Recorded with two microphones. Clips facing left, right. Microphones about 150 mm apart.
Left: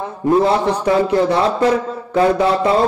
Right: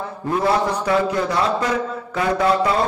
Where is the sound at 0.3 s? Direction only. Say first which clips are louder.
Left 5 dB; 30° left (ahead or behind).